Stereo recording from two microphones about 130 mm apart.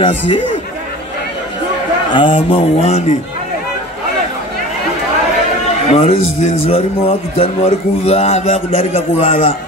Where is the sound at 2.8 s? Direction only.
60° left (ahead or behind).